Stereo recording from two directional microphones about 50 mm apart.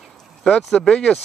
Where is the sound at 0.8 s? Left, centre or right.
Left.